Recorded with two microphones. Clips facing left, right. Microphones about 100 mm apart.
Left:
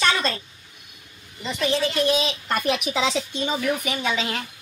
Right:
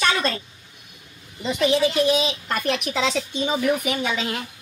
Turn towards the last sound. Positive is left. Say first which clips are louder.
# even
turn(degrees=0)  # may be behind; listen again after turning